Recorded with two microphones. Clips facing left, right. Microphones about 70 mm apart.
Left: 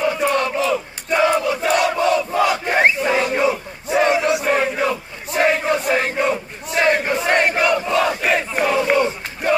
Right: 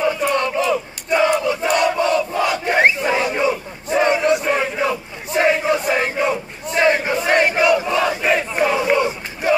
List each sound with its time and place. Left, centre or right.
0.0 s battle cry: centre